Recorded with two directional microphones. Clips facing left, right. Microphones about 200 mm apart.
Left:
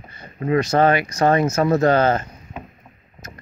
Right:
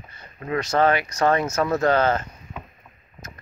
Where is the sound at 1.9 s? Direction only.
45° left (ahead or behind).